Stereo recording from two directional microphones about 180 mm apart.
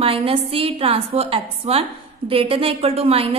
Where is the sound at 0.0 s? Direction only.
30° right (ahead or behind).